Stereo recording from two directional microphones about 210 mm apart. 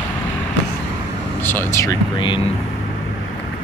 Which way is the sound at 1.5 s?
15° left (ahead or behind).